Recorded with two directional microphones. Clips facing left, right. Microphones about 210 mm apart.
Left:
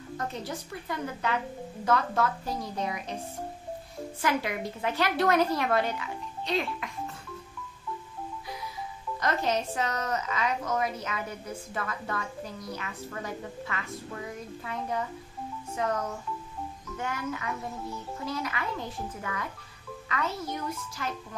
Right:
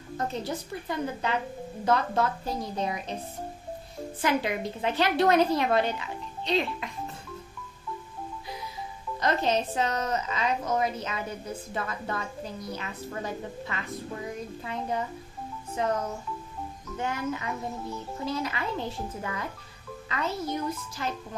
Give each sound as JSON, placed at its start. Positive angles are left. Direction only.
{"t": 0.5, "sound": "a woman's voice", "side_deg": -25}
{"t": 4.2, "sound": "a woman's voice", "side_deg": -25}
{"t": 9.2, "sound": "a woman's voice", "side_deg": -25}
{"t": 20.5, "sound": "a woman's voice", "side_deg": -25}